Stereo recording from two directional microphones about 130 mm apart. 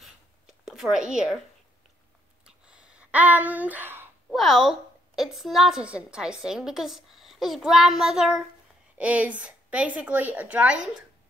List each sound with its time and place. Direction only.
0.0 s writing: 5° right (ahead or behind)
2.4 s a sound: 5° right (ahead or behind)
4.3 s a woman's voice: centre (ahead or behind)